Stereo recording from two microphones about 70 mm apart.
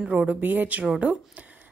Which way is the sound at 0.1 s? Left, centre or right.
Right.